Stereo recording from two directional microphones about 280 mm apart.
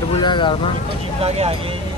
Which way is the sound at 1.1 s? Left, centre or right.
Right.